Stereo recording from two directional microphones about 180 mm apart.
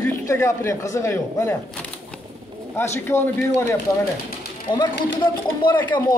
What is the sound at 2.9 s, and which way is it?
Speech, 15° left (ahead or behind).